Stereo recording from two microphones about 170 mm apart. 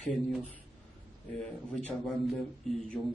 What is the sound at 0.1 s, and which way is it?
Speech, 5° left (ahead or behind).